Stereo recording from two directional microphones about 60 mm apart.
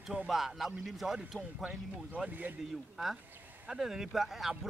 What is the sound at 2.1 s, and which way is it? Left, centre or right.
Speech, right.